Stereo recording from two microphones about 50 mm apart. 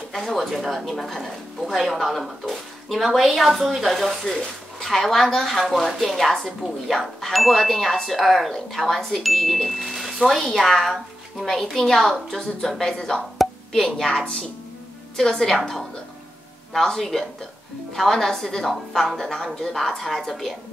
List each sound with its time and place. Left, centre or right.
0.1 s a woman's voice: centre
13.4 s plop: centre
13.8 s a woman's voice: centre